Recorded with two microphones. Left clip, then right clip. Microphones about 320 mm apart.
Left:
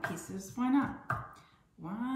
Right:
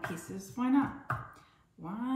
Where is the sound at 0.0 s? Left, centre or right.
Centre.